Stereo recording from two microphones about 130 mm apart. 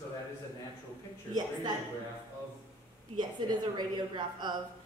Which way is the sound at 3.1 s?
35° right (ahead or behind).